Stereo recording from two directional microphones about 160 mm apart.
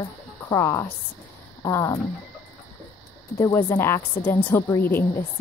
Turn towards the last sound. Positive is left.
turn(degrees=15)  # may be behind; listen again after turning